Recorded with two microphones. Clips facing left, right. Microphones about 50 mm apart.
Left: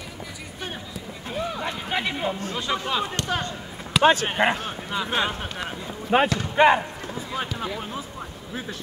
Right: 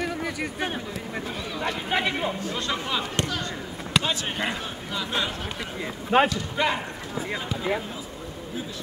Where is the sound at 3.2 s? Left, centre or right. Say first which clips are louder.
Left 2 dB; left.